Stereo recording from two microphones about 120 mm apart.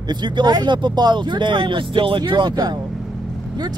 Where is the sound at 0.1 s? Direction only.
40° right (ahead or behind).